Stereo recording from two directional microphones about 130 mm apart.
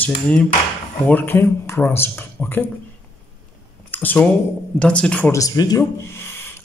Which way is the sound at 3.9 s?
15° left (ahead or behind).